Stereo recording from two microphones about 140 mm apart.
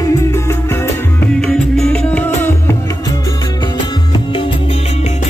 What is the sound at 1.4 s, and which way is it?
Music, 5° left (ahead or behind).